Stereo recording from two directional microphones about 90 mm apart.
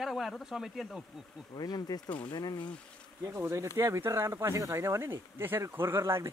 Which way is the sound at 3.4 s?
30° right (ahead or behind).